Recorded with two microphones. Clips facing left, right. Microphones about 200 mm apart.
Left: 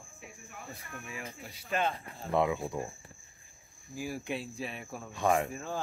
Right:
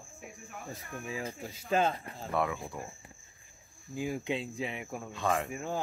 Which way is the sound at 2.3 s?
20° left (ahead or behind).